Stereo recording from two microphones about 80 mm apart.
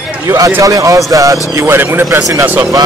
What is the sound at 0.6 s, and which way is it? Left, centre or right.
Speech, right.